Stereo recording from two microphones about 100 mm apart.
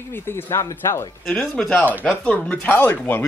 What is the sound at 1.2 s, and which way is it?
Speech, 10° left (ahead or behind).